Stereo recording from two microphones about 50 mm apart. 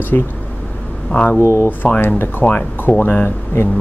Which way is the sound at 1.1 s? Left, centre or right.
Left.